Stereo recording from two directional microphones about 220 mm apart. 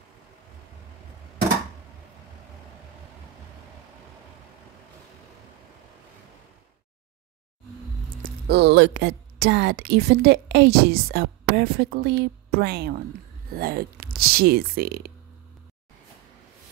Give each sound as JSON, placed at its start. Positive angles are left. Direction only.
{"t": 8.1, "sound": "speech", "side_deg": -45}